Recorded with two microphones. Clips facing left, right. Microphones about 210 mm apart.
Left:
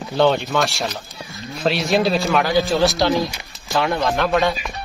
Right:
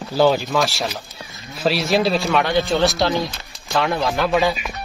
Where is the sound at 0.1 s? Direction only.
5° right (ahead or behind).